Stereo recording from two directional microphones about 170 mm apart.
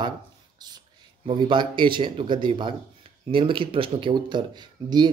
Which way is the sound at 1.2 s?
30° right (ahead or behind).